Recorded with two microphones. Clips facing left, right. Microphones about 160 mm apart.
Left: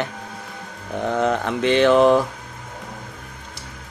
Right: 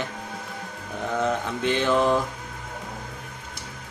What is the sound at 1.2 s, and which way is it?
Speech, 70° left (ahead or behind).